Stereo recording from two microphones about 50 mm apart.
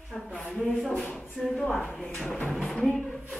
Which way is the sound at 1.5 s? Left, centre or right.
Left.